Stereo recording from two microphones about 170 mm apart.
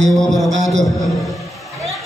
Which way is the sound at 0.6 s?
45° right (ahead or behind).